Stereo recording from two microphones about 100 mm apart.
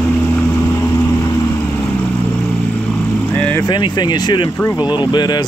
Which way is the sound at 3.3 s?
20° left (ahead or behind).